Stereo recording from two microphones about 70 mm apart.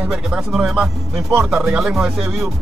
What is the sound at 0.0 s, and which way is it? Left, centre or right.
Speech, centre.